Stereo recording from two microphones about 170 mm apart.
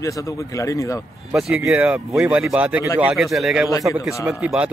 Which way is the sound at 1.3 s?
5° right (ahead or behind).